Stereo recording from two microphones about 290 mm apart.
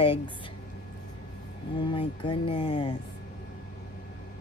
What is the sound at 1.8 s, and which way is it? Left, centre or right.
A woman's voice, centre.